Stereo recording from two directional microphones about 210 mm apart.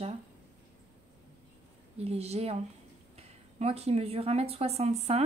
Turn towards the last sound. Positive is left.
turn(degrees=-30)  # may be behind; listen again after turning